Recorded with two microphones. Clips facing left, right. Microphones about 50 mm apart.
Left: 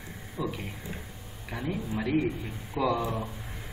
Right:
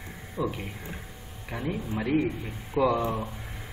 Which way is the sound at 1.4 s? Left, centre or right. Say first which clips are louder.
Right 1 dB; centre.